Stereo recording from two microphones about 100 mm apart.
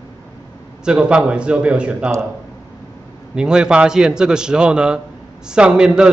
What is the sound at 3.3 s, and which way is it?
A man's voice, 10° right (ahead or behind).